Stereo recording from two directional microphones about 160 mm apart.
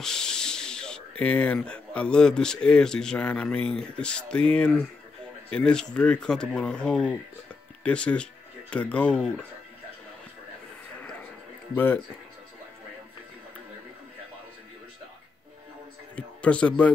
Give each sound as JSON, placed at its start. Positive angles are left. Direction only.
{"t": 0.0, "sound": "speech", "side_deg": 5}
{"t": 11.7, "sound": "speech", "side_deg": 15}
{"t": 16.2, "sound": "a man's voice", "side_deg": 10}